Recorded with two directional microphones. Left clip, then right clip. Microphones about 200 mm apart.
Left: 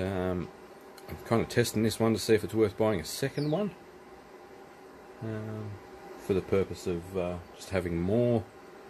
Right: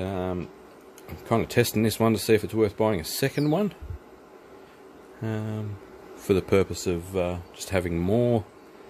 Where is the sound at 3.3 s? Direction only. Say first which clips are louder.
Right 6 dB; 35° right (ahead or behind).